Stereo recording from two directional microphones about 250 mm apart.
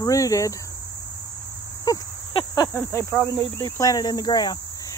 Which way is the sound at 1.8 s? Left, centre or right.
Centre.